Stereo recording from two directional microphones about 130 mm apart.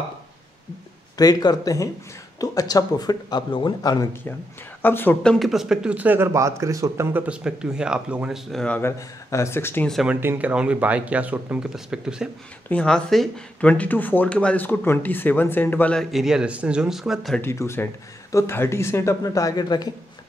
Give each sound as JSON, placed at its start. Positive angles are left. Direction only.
{"t": 1.1, "sound": "speech", "side_deg": 30}
{"t": 4.8, "sound": "speech", "side_deg": 15}
{"t": 5.3, "sound": "speech", "side_deg": 0}
{"t": 10.0, "sound": "speech", "side_deg": -15}
{"t": 12.6, "sound": "speech", "side_deg": 5}
{"t": 17.4, "sound": "speech", "side_deg": 20}